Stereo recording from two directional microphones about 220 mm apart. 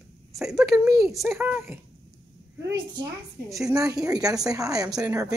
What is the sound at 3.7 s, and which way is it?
A woman's voice, 15° right (ahead or behind).